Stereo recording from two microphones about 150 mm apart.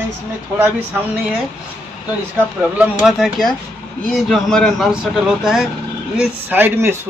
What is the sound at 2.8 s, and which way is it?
A man's voice, 5° right (ahead or behind).